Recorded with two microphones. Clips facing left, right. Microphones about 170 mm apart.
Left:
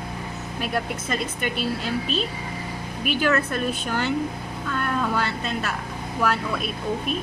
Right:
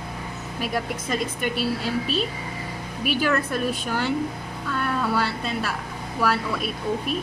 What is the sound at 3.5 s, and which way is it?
A woman's voice, 10° right (ahead or behind).